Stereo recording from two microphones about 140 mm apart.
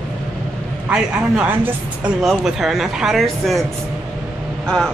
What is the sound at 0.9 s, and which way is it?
Speech, 5° right (ahead or behind).